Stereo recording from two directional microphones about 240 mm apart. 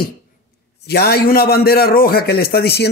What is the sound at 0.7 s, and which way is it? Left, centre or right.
A man's voice, left.